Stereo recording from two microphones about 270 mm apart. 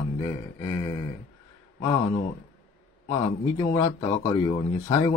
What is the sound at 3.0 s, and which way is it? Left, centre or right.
Speech, centre.